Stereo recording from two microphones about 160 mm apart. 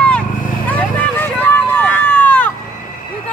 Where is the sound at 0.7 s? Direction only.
10° left (ahead or behind).